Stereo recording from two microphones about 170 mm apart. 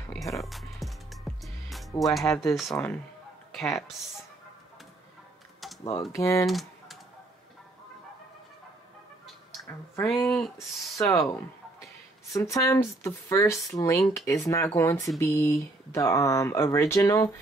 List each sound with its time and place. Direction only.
0.0 s music: 15° left (ahead or behind)
0.4 s music: centre (ahead or behind)
2.4 s speech: centre (ahead or behind)
6.1 s speech: 15° left (ahead or behind)
6.4 s typing: centre (ahead or behind)
10.0 s speech: centre (ahead or behind)
11.1 s speech: 15° left (ahead or behind)